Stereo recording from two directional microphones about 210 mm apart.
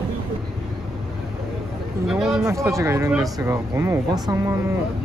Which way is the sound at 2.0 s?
Centre (ahead or behind).